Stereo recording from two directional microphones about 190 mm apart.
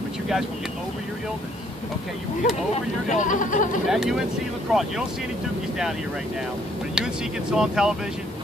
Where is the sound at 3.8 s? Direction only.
Centre (ahead or behind).